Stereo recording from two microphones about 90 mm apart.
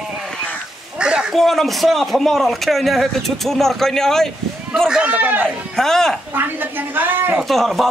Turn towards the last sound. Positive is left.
turn(degrees=0)  # may be behind; listen again after turning